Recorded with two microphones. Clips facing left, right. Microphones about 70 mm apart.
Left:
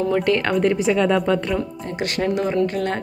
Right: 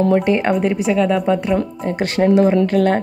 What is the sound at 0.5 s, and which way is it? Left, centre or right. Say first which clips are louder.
Speech: right 2 dB; centre.